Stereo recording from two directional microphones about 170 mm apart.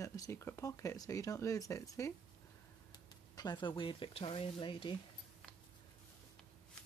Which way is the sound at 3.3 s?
25° left (ahead or behind).